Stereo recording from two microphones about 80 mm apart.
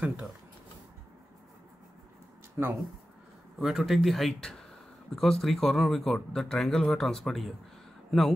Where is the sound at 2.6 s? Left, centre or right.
Right.